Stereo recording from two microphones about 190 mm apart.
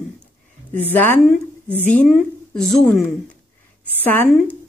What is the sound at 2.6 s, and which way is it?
A woman's voice, centre (ahead or behind).